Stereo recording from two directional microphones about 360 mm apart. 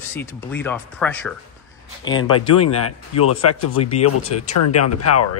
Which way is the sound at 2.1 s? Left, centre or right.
Left.